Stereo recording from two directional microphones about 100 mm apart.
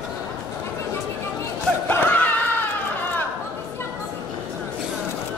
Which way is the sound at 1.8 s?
20° left (ahead or behind).